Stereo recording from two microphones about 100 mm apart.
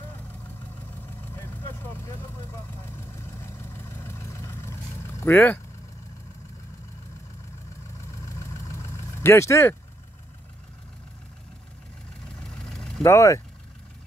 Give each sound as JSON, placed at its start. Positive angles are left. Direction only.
{"t": 1.2, "sound": "vehicle", "side_deg": 25}
{"t": 3.4, "sound": "vehicle", "side_deg": 25}
{"t": 8.3, "sound": "vehicle", "side_deg": 30}
{"t": 12.4, "sound": "vehicle", "side_deg": 5}
{"t": 13.0, "sound": "speech", "side_deg": 30}